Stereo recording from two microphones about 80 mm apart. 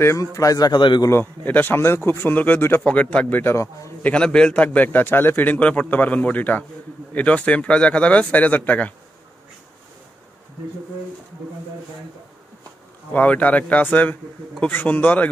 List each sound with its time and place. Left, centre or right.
0.2 s a man's voice: left
1.1 s a man's voice: left
4.0 s speech: centre
4.6 s a man's voice: left
13.1 s a man's voice: centre